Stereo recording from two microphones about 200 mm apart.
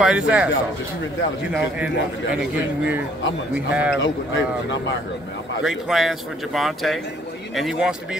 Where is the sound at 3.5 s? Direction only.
5° right (ahead or behind).